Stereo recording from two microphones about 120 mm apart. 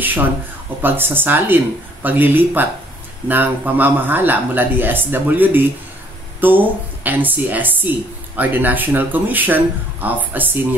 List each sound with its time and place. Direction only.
0.8 s speech: 15° right (ahead or behind)